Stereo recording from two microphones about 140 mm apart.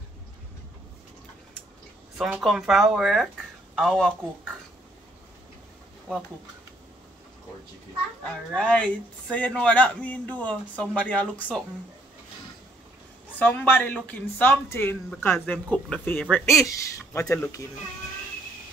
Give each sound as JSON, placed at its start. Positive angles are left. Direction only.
{"t": 2.1, "sound": "speech", "side_deg": -5}
{"t": 8.3, "sound": "speech", "side_deg": 10}
{"t": 13.4, "sound": "speech", "side_deg": 15}
{"t": 16.4, "sound": "speech", "side_deg": 20}